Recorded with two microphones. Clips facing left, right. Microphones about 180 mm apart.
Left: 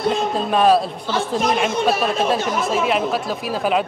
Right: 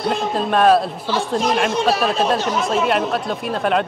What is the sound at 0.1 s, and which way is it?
A man's voice, centre (ahead or behind).